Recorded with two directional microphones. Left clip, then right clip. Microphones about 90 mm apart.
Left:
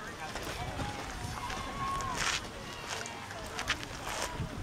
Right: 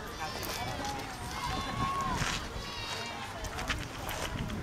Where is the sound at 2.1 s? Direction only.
15° left (ahead or behind).